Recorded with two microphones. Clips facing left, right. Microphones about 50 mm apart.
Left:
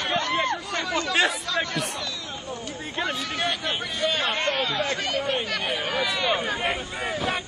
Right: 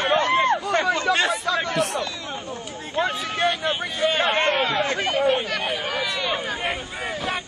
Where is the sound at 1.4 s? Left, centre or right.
Centre.